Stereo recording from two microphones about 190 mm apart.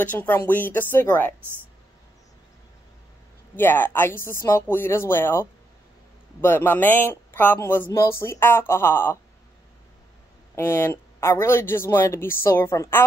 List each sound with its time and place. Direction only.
0.0 s speech: 10° left (ahead or behind)
3.5 s speech: 10° left (ahead or behind)
10.5 s speech: 10° left (ahead or behind)